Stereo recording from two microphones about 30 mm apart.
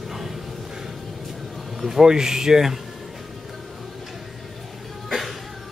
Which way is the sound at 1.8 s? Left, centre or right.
Centre.